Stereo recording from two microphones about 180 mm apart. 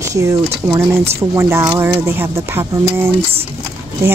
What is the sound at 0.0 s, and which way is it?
Speech, 15° right (ahead or behind).